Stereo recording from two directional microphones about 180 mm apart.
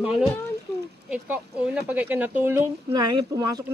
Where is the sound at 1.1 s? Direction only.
5° right (ahead or behind).